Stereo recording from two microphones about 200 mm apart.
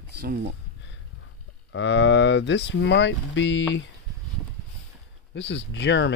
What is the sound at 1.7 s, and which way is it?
Speech, 60° left (ahead or behind).